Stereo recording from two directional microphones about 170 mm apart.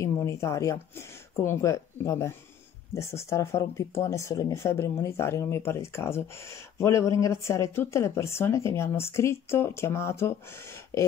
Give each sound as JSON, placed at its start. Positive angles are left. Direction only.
{"t": 0.0, "sound": "speech", "side_deg": 15}